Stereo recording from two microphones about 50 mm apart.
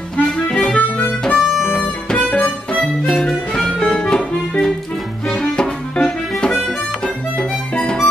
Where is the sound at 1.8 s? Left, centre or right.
Centre.